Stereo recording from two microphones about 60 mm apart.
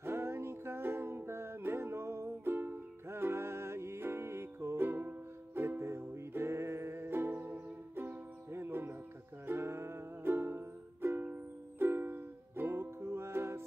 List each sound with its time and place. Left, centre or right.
0.0 s music: right